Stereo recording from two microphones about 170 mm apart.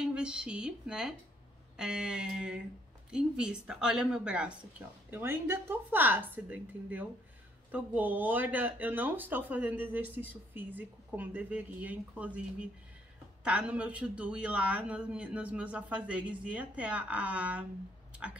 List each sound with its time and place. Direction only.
0.0 s speech: 5° right (ahead or behind)
1.8 s a sound: 5° right (ahead or behind)
3.1 s speech: 5° right (ahead or behind)